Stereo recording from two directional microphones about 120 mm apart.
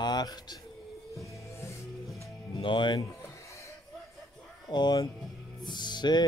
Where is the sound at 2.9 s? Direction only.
25° left (ahead or behind).